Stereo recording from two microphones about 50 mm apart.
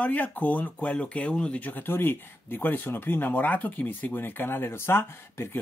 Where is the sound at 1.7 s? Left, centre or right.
Left.